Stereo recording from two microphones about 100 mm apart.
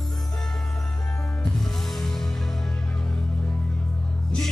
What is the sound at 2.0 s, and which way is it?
Music, 5° left (ahead or behind).